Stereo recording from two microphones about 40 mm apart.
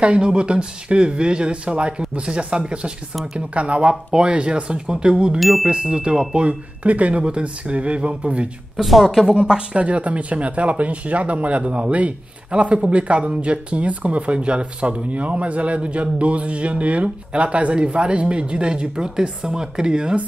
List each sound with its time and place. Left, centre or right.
0.0 s speech: right
5.4 s music: centre
5.7 s speech: right
8.7 s speech: centre
9.0 s speech: centre
9.8 s speech: right